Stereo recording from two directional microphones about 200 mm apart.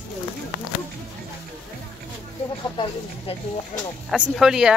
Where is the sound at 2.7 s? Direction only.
25° left (ahead or behind).